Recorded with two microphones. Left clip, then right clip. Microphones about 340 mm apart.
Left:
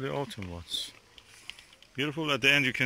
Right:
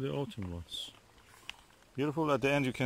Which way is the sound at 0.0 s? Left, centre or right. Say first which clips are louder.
Left 4 dB; centre.